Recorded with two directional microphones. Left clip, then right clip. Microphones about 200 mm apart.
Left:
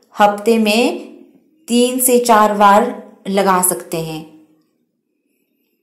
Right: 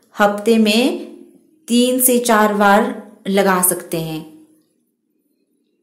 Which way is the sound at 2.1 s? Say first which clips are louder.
Left 5 dB; 10° right (ahead or behind).